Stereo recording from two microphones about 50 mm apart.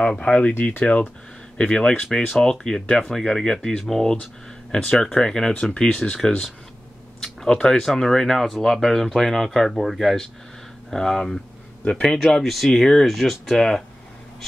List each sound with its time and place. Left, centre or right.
0.0 s speech: left
1.6 s speech: centre